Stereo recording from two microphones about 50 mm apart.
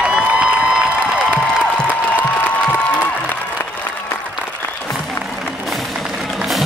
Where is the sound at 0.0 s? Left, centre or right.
Right.